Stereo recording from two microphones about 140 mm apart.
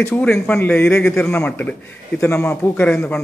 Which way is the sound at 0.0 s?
15° left (ahead or behind).